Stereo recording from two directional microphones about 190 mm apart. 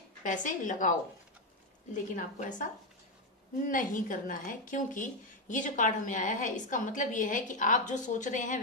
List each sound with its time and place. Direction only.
0.2 s a woman's voice: 40° left (ahead or behind)
2.1 s a woman's voice: 45° left (ahead or behind)